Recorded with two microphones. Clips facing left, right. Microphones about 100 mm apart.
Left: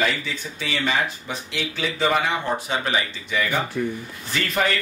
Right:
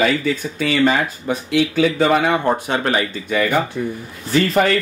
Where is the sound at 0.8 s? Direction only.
50° right (ahead or behind).